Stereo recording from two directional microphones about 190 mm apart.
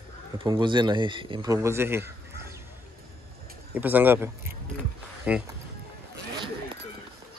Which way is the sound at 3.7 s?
10° right (ahead or behind).